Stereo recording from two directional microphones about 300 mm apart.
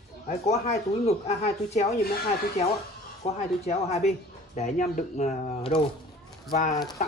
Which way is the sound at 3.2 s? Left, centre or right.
Left.